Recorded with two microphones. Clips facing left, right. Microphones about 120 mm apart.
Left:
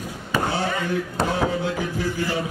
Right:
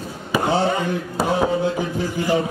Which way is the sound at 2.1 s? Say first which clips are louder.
Right 5 dB; 15° right (ahead or behind).